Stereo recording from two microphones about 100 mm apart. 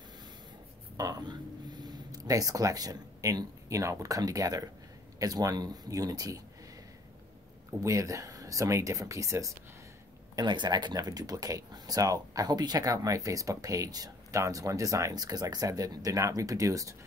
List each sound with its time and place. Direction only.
0.9 s speech: 35° right (ahead or behind)
7.8 s speech: 30° right (ahead or behind)
10.3 s speech: 50° right (ahead or behind); by 16.9 s 35° right (ahead or behind)